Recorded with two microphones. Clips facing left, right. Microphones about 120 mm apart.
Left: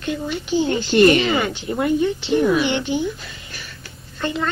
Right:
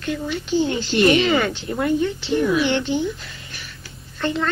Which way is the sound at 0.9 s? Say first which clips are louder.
Left 5 dB; 45° left (ahead or behind).